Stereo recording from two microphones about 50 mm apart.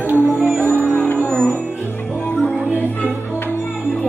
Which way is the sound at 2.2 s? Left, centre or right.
Left.